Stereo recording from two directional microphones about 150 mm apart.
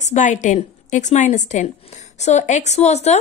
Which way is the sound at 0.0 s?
55° left (ahead or behind).